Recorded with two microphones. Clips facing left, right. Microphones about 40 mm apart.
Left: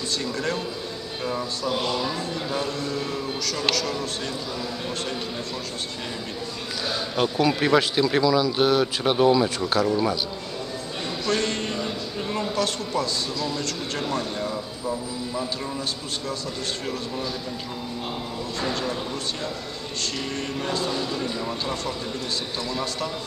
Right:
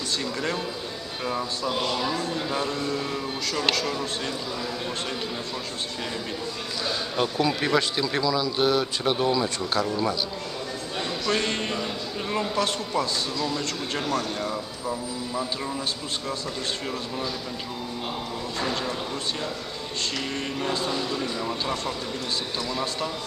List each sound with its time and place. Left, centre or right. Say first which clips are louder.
0.2 s speech: left 2 dB; centre
1.7 s speech: left 1 dB; centre
6.9 s speech: left 2 dB; centre
11.2 s a man's voice: left 1 dB; right
12.5 s a man's voice: left 1 dB; right
14.4 s speech: left 1 dB; centre
18.6 s a man's voice: left 1 dB; centre
20.9 s speech: left 1 dB; centre